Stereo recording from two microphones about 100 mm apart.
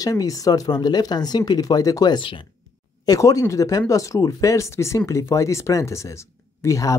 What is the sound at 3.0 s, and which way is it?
Speech, 35° left (ahead or behind).